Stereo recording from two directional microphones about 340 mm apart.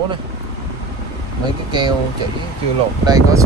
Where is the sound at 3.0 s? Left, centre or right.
Centre.